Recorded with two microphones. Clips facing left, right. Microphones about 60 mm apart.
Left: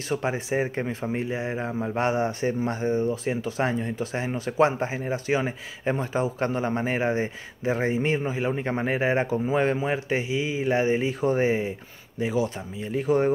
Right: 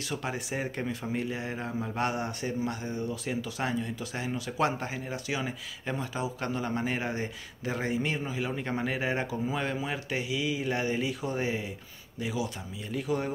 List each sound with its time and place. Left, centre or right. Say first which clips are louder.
0.1 s speech: left 8 dB; left